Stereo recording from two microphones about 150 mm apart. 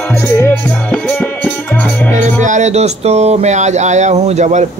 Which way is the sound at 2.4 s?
50° right (ahead or behind).